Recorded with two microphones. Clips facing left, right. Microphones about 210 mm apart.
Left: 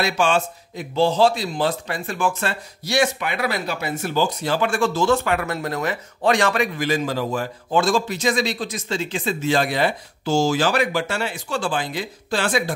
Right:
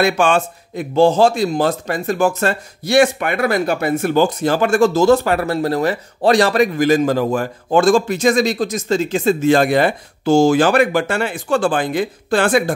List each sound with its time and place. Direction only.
0.0 s speech: 55° right (ahead or behind)